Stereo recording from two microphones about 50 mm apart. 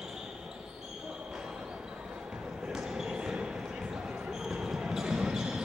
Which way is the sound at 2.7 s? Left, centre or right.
Centre.